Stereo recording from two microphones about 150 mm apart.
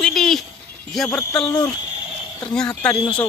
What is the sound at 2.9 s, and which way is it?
Speech, 35° left (ahead or behind).